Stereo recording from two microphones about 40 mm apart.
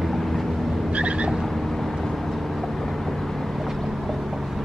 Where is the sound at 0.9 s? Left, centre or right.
Right.